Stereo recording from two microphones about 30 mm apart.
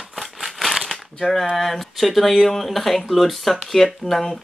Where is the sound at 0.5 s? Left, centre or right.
Centre.